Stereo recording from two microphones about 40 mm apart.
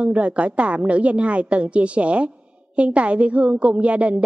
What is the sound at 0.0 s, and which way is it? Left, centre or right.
A woman's voice, right.